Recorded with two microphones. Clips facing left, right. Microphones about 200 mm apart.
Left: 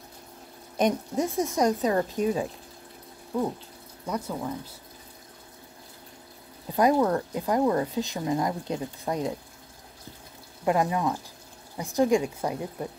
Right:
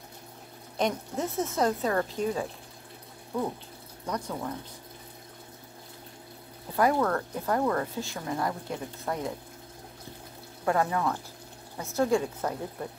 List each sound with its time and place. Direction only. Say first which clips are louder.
0.7 s speech: left 4 dB; 15° left (ahead or behind)
4.0 s speech: left 2 dB; 10° left (ahead or behind)
6.7 s speech: left 3 dB; 20° left (ahead or behind)
10.6 s speech: left 2 dB; 15° left (ahead or behind)